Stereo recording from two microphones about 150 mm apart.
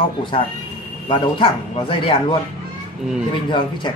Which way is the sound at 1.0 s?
35° left (ahead or behind).